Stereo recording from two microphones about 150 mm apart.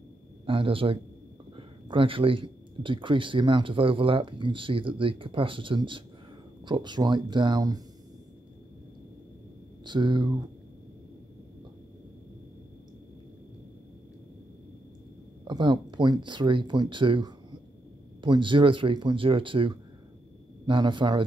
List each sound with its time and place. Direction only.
0.5 s speech: 35° right (ahead or behind)
9.8 s speech: 30° right (ahead or behind)
15.4 s speech: 30° right (ahead or behind)